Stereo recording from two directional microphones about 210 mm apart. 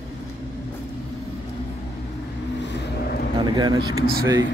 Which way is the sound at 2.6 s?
55° left (ahead or behind).